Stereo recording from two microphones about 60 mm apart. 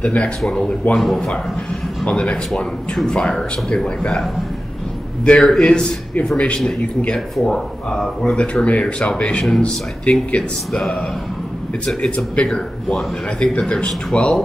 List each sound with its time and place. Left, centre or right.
0.0 s a man's voice: centre
0.9 s speech: centre
2.0 s a man's voice: centre
5.2 s a man's voice: centre